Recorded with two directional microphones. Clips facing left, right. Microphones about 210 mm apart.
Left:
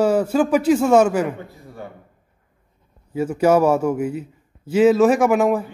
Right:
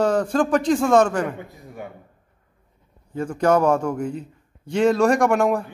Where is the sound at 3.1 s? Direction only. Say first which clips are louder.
Left 3 dB; 10° left (ahead or behind).